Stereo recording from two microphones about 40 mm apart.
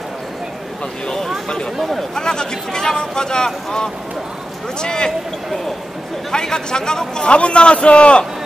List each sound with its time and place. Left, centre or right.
1.0 s speech: centre
2.1 s speech: centre
6.3 s a man's voice: centre